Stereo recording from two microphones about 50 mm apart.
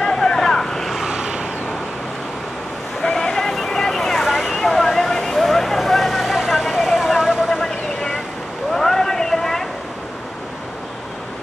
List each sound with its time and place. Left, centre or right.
0.0 s vehicle: centre
1.0 s vehicle: centre
3.0 s a sound: centre
4.6 s vehicle: centre
7.5 s vehicle: centre
8.7 s a sound: centre